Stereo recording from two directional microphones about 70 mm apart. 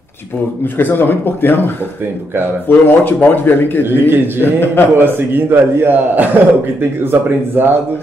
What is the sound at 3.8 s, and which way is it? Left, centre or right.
A man's voice, right.